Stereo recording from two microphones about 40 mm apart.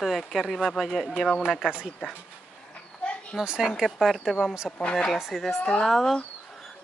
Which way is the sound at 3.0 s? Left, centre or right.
Left.